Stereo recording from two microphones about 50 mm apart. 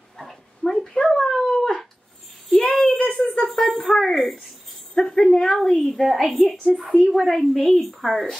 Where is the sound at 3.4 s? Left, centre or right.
Centre.